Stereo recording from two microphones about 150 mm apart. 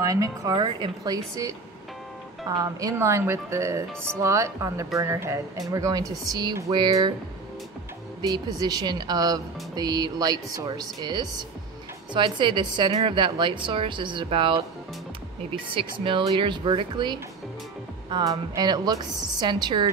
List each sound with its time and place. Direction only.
0.0 s speech: 20° right (ahead or behind)
2.5 s speech: 25° right (ahead or behind)
8.2 s speech: 25° right (ahead or behind)
15.7 s speech: 35° right (ahead or behind)